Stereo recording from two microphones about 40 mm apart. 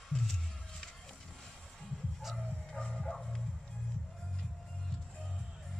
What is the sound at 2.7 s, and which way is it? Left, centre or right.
Music, left.